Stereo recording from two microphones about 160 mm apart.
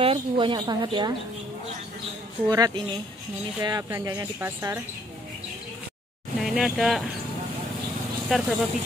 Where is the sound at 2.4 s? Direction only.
25° right (ahead or behind).